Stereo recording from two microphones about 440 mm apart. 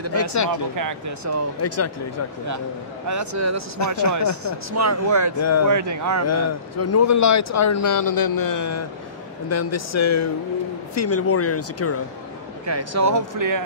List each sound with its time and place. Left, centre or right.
0.1 s a man's voice: left
0.5 s speech: right
1.6 s a man's voice: left
3.1 s speech: right
5.4 s a man's voice: left
5.7 s speech: right
6.2 s a man's voice: left
12.6 s speech: right